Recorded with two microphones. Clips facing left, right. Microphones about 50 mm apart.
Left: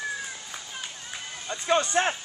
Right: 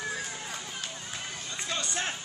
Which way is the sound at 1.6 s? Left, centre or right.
Left.